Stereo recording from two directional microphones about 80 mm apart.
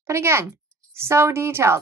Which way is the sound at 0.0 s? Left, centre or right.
Right.